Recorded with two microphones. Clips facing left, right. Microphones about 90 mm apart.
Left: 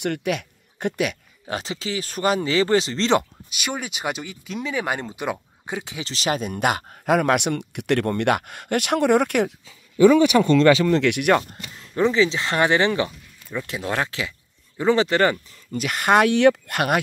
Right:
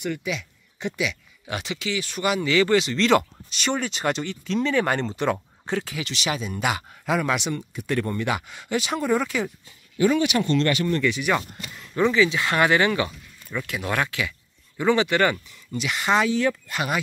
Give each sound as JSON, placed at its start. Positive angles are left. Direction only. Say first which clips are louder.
{"t": 0.0, "sound": "speech", "louder": "left 4 dB", "side_deg": 60}
{"t": 1.4, "sound": "speech", "louder": "left 1 dB", "side_deg": 35}
{"t": 3.4, "sound": "speech", "louder": "right 3 dB", "side_deg": 10}
{"t": 6.1, "sound": "speech", "louder": "left 5 dB", "side_deg": 45}
{"t": 10.9, "sound": "speech", "louder": "left 5 dB", "side_deg": 75}
{"t": 11.8, "sound": "speech", "louder": "left 1 dB", "side_deg": 30}